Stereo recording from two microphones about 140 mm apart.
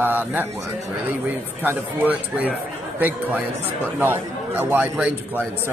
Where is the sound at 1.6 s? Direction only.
10° right (ahead or behind).